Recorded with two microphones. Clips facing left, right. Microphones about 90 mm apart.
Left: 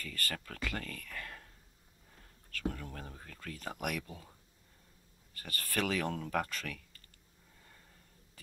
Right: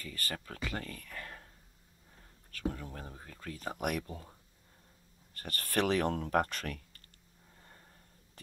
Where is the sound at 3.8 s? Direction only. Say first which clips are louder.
Right 4 dB; 35° right (ahead or behind).